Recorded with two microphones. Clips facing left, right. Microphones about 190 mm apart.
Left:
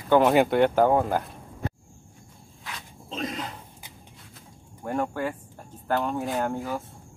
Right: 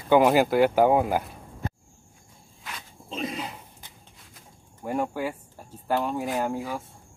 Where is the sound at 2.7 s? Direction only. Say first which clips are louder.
Even; 5° right (ahead or behind).